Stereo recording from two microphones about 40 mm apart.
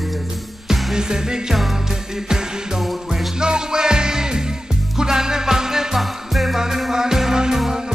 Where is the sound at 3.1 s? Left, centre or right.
Centre.